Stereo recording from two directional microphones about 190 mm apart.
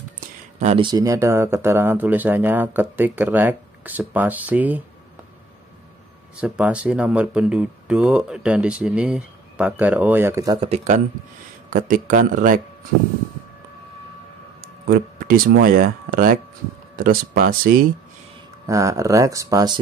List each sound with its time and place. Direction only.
0.6 s speech: 35° right (ahead or behind)
0.8 s speech: 20° right (ahead or behind)
6.3 s speech: 5° right (ahead or behind)
10.6 s speech: 35° right (ahead or behind)
14.6 s speech: 50° right (ahead or behind)
18.7 s speech: 15° right (ahead or behind)